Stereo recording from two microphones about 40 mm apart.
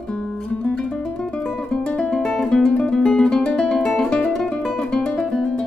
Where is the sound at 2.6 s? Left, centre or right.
Left.